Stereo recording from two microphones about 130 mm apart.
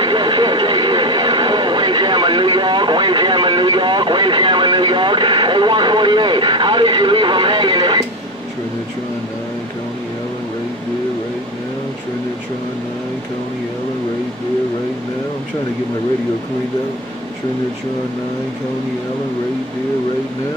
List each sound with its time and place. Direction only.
0.0 s vehicle: 35° right (ahead or behind)